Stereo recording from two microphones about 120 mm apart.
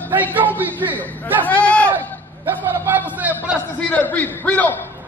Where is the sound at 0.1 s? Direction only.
15° right (ahead or behind).